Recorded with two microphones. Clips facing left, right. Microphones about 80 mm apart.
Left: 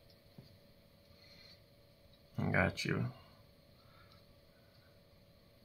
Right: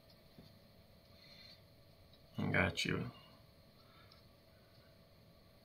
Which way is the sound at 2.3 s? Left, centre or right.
Centre.